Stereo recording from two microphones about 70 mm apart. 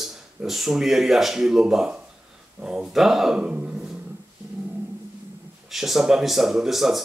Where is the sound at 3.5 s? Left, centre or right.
Centre.